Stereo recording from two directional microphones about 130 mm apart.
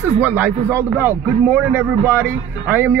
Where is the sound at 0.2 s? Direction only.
15° right (ahead or behind).